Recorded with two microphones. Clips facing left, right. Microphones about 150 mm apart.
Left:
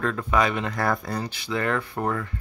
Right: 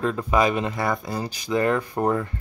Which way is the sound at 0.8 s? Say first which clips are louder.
Even; centre (ahead or behind).